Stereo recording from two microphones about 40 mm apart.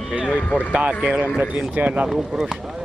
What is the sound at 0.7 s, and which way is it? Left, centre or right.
Speech, right.